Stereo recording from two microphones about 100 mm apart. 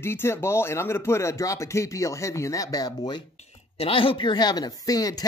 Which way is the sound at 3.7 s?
70° left (ahead or behind).